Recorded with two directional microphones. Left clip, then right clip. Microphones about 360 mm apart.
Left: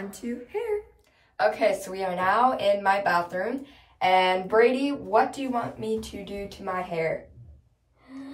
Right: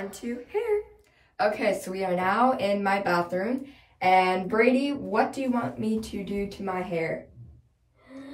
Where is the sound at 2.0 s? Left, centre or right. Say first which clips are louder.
Left 1 dB; left.